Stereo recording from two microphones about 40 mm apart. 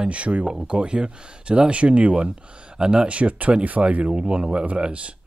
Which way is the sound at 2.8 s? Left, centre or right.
Centre.